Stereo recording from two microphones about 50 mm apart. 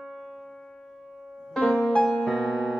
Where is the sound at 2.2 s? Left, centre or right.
Centre.